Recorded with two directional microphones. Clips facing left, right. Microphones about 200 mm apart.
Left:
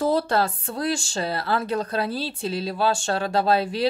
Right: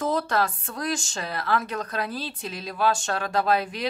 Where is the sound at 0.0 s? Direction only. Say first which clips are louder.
Left 3 dB; 30° left (ahead or behind).